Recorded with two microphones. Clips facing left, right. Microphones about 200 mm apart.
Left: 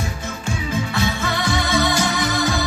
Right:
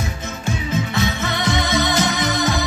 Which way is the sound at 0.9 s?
20° right (ahead or behind).